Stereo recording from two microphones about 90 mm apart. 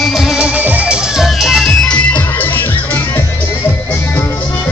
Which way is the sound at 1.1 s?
5° right (ahead or behind).